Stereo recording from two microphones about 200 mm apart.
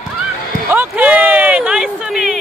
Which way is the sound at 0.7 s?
10° right (ahead or behind).